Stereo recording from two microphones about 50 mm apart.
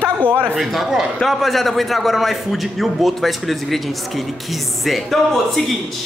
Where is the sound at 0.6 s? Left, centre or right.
Centre.